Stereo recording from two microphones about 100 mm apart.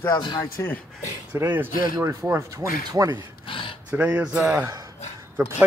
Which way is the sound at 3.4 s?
60° left (ahead or behind).